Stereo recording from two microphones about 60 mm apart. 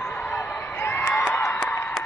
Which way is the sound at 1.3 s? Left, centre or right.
Left.